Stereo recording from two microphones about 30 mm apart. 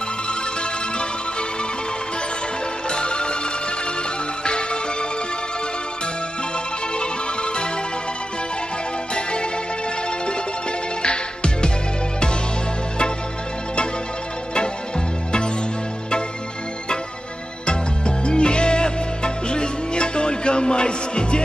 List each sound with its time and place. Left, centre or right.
2.9 s music: left
7.0 s music: left
9.1 s music: left
11.0 s music: left
17.6 s music: left